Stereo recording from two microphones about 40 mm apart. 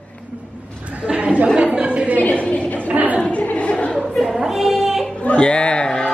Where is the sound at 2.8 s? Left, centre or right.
Right.